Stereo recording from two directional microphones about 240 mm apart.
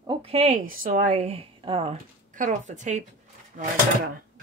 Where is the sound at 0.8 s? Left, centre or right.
Right.